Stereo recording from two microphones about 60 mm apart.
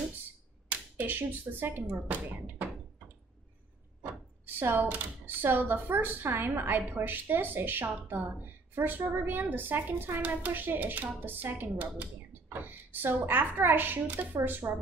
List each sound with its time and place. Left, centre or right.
0.7 s speech: right
4.6 s a woman's voice: right